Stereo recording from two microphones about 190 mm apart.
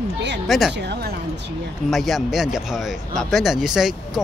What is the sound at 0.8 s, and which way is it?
Speech, 60° right (ahead or behind).